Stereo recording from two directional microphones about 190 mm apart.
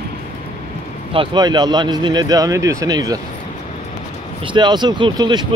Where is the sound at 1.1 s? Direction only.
25° right (ahead or behind).